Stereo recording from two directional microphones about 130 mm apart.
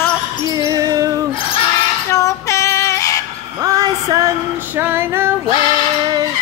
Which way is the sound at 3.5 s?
30° right (ahead or behind).